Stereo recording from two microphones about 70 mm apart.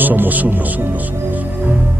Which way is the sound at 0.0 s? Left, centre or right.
Right.